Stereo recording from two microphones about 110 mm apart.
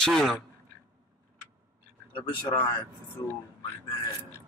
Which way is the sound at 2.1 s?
45° left (ahead or behind).